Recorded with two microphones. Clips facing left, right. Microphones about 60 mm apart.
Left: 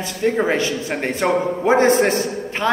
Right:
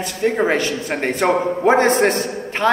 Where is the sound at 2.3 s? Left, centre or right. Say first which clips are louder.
Right 2 dB; right.